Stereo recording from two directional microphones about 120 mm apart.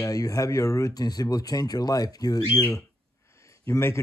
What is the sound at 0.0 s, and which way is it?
Speech, 30° left (ahead or behind).